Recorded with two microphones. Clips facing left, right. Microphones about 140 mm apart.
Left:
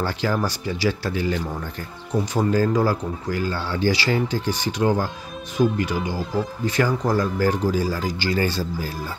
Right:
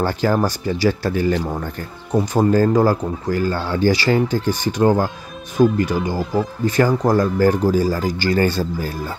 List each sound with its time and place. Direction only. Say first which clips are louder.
0.0 s speech: right 5 dB; 45° right (ahead or behind)